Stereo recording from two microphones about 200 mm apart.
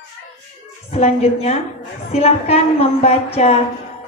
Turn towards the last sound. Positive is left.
turn(degrees=30)  # may be behind; listen again after turning